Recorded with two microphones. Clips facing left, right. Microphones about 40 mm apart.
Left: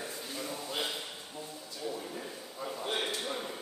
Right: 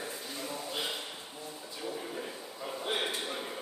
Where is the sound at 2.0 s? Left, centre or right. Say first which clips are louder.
Right 2 dB; centre.